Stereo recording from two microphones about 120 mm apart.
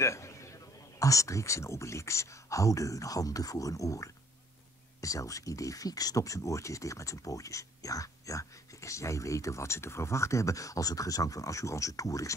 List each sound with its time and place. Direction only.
0.0 s a man's voice: 25° left (ahead or behind)